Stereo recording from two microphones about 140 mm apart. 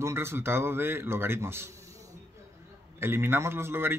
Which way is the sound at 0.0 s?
20° right (ahead or behind).